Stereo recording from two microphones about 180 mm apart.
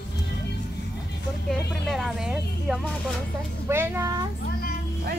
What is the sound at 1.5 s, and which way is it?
A child's voice, centre (ahead or behind).